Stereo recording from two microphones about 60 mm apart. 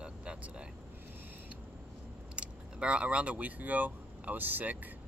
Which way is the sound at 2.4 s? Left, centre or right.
Centre.